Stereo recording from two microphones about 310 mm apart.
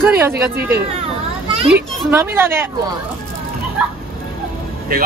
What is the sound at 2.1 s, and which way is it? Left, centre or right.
Speech, centre.